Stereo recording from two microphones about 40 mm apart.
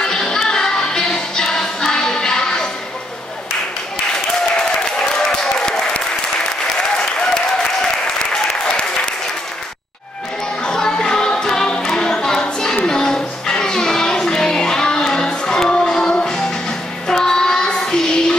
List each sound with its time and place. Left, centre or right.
0.0 s music: centre
4.6 s applause: left
10.6 s music: centre
17.1 s child singing: centre